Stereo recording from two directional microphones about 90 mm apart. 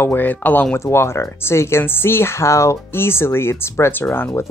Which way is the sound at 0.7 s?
30° left (ahead or behind).